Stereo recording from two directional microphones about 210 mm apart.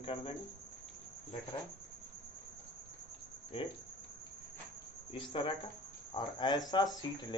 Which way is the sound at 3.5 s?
25° left (ahead or behind).